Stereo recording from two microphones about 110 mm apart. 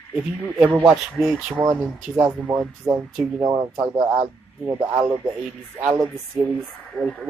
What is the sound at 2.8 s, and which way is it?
Speech, 25° right (ahead or behind).